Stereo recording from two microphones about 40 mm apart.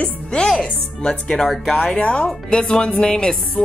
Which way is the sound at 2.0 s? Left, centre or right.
Left.